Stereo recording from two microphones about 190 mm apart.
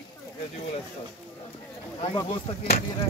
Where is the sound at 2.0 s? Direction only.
30° left (ahead or behind).